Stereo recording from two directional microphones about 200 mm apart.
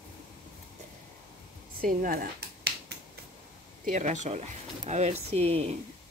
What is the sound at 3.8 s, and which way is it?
Speech, 40° right (ahead or behind).